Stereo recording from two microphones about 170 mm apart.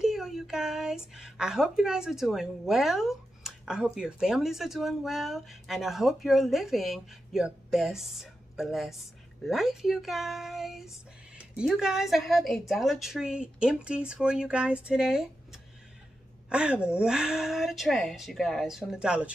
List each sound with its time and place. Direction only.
0.0 s a woman's voice: 5° right (ahead or behind)